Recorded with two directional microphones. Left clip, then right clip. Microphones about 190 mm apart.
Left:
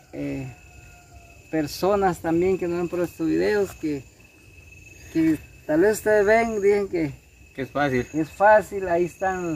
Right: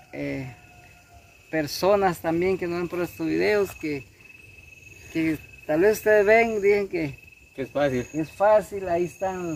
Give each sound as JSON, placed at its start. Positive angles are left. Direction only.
{"t": 0.1, "sound": "speech", "side_deg": -20}
{"t": 1.5, "sound": "speech", "side_deg": -15}
{"t": 5.1, "sound": "speech", "side_deg": -15}
{"t": 7.5, "sound": "speech", "side_deg": 10}
{"t": 8.2, "sound": "speech", "side_deg": -15}